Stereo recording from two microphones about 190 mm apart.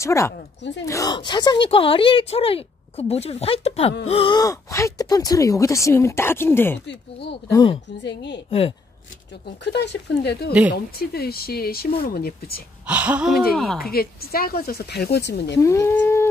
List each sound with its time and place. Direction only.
0.0 s speech: 15° left (ahead or behind)
6.9 s speech: 60° left (ahead or behind)
7.5 s speech: 25° left (ahead or behind)
8.0 s speech: 65° left (ahead or behind)
8.5 s speech: 30° left (ahead or behind)
9.7 s speech: 60° left (ahead or behind)
12.8 s speech: 5° right (ahead or behind)
13.9 s speech: 50° left (ahead or behind)
15.6 s speech: 15° left (ahead or behind)